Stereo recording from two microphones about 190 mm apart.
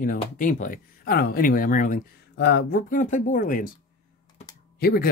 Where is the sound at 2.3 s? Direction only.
60° left (ahead or behind).